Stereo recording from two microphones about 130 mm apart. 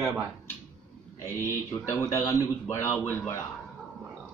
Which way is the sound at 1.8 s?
25° left (ahead or behind).